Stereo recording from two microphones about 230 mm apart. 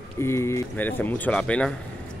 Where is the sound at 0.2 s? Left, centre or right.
Centre.